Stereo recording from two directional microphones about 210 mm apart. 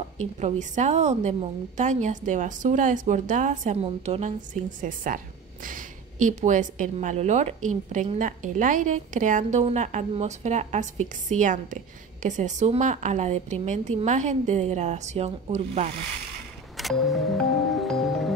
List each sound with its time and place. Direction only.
0.4 s a woman's voice: 35° right (ahead or behind)
16.7 s music: centre (ahead or behind)